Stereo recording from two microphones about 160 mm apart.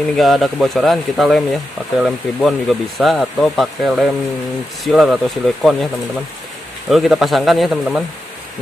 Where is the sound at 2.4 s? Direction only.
Centre (ahead or behind).